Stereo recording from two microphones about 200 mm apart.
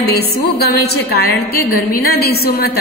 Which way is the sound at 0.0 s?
50° left (ahead or behind).